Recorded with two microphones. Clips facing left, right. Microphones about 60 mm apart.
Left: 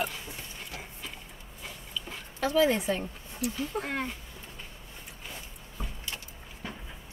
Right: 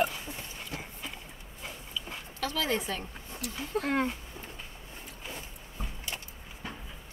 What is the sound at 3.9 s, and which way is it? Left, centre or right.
Speech, centre.